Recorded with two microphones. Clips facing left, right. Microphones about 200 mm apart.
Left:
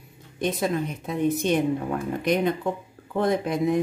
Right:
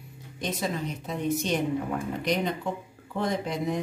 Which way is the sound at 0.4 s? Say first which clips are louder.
Left 5 dB; 55° left (ahead or behind).